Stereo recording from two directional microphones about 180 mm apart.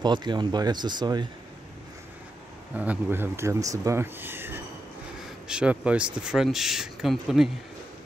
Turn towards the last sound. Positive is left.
turn(degrees=0)  # may be behind; listen again after turning